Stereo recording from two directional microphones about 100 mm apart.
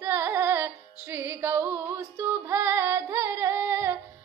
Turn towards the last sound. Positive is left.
turn(degrees=-25)  # may be behind; listen again after turning